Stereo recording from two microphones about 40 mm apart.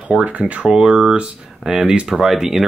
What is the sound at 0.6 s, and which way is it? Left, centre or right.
Speech, centre.